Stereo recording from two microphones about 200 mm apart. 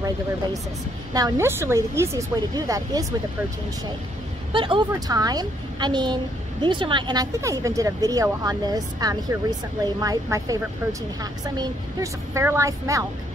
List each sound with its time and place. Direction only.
1.1 s speech: 15° right (ahead or behind)
4.5 s speech: 25° right (ahead or behind)